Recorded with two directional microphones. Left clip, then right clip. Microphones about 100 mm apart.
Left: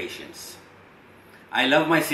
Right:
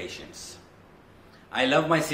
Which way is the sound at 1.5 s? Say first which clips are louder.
Left 3 dB; 20° right (ahead or behind).